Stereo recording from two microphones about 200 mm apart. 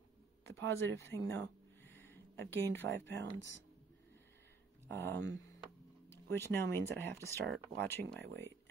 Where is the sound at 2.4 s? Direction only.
60° right (ahead or behind).